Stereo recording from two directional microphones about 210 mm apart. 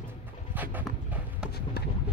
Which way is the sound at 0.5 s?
10° right (ahead or behind).